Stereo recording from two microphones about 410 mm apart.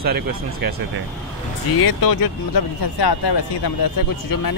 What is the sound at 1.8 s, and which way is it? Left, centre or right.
Speech, left.